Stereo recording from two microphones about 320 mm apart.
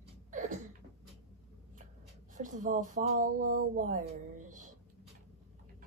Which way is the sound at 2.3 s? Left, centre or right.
Right.